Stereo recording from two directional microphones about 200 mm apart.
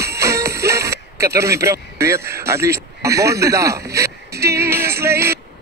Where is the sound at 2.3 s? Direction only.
15° right (ahead or behind).